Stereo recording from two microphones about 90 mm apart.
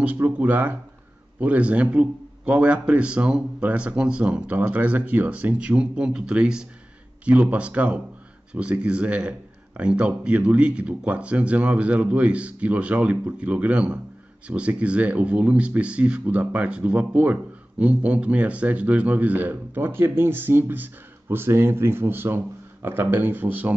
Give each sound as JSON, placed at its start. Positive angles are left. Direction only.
{"t": 0.0, "sound": "speech", "side_deg": -15}